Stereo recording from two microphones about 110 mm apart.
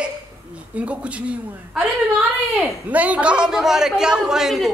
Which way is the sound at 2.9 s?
15° right (ahead or behind).